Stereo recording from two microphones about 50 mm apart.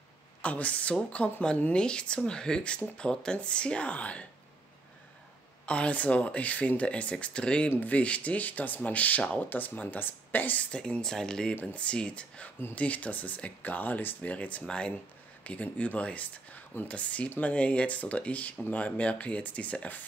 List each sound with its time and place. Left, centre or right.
0.4 s speech: left
5.7 s speech: left
10.7 s speech: centre